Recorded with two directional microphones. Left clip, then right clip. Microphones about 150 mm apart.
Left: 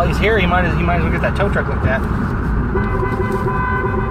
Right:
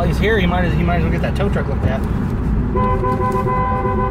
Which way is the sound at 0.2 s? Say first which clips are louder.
Left 1 dB; 40° right (ahead or behind).